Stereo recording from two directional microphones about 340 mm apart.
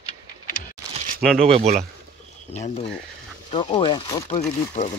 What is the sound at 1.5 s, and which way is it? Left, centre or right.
Speech, centre.